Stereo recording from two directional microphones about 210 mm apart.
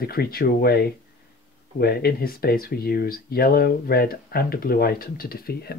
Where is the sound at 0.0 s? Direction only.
45° left (ahead or behind).